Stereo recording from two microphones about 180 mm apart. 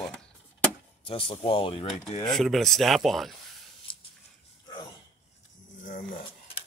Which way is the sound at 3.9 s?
30° left (ahead or behind).